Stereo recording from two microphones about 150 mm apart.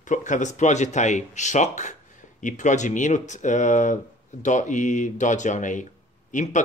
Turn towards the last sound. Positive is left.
turn(degrees=55)  # may be behind; listen again after turning